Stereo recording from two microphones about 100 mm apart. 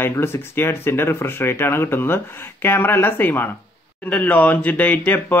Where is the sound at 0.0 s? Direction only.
25° left (ahead or behind).